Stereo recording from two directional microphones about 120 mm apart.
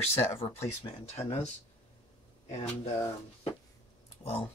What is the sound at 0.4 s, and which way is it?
Speech, 55° left (ahead or behind).